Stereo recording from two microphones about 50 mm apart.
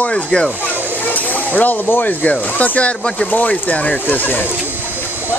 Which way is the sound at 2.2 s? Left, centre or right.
Left.